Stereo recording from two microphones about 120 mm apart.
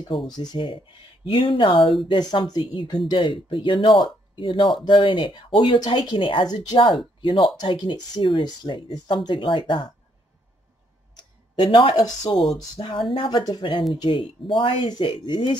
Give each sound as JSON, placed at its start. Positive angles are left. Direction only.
{"t": 0.4, "sound": "speech", "side_deg": 40}
{"t": 11.5, "sound": "speech", "side_deg": 45}
{"t": 12.7, "sound": "speech", "side_deg": 50}